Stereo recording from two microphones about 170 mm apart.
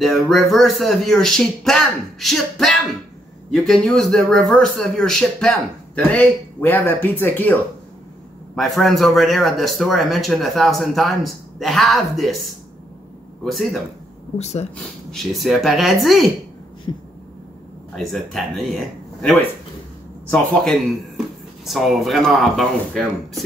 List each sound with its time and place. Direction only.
0.0 s speech: centre (ahead or behind)
8.5 s speech: centre (ahead or behind)
13.4 s speech: centre (ahead or behind)
14.4 s speech: 40° left (ahead or behind)
15.0 s speech: centre (ahead or behind)
16.9 s a sound: 25° left (ahead or behind)
17.9 s speech: centre (ahead or behind)
20.6 s speech: centre (ahead or behind)